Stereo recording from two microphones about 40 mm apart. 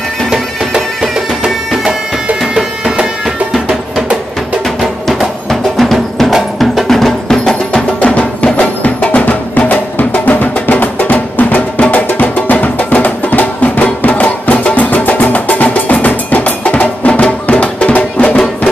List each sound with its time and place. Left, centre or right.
0.3 s music: centre
2.5 s music: centre
5.2 s music: centre
6.9 s music: centre
8.0 s music: left
11.8 s music: left